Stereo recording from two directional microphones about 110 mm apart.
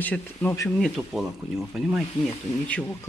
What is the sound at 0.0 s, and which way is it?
Speech, 15° left (ahead or behind).